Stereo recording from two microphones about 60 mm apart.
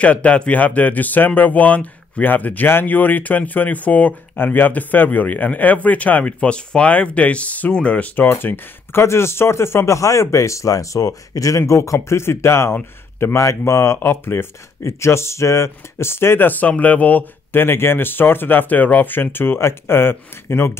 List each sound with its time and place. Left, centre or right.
0.0 s speech: left
8.3 s speech: left
13.9 s speech: left
17.6 s speech: left